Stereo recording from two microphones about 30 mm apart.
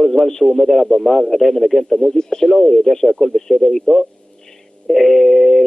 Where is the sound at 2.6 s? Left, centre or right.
Centre.